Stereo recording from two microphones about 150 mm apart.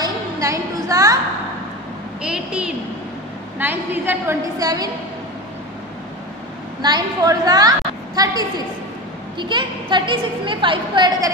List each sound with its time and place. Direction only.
0.0 s a sound: 20° right (ahead or behind)
2.2 s a woman's voice: 5° right (ahead or behind); by 4.8 s 25° right (ahead or behind)
6.8 s a woman's voice: 25° right (ahead or behind)
9.4 s a woman's voice: 30° right (ahead or behind)